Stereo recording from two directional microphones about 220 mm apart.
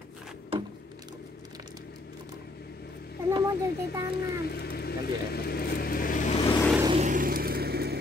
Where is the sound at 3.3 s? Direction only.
15° right (ahead or behind).